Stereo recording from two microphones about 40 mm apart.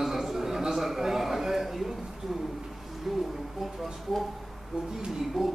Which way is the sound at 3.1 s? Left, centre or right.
Centre.